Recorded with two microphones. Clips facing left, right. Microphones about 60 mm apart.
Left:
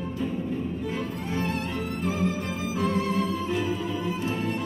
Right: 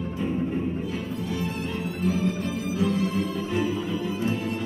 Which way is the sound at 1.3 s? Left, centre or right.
Left.